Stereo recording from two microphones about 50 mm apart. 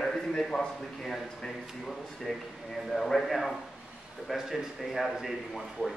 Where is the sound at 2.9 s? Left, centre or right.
Centre.